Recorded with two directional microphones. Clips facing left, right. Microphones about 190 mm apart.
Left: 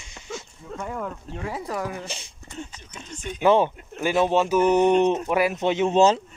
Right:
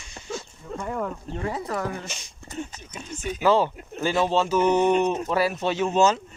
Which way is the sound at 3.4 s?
20° left (ahead or behind).